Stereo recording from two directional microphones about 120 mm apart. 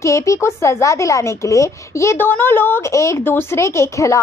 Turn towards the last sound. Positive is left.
turn(degrees=25)  # may be behind; listen again after turning